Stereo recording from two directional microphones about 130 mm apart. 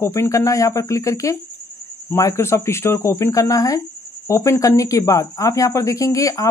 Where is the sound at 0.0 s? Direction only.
20° left (ahead or behind).